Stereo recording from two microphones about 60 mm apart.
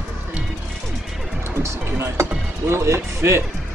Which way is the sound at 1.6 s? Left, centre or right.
Right.